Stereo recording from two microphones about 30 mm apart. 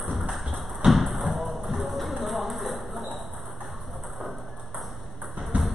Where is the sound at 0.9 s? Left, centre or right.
Centre.